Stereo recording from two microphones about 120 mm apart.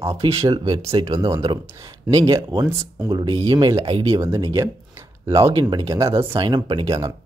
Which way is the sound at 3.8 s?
45° right (ahead or behind).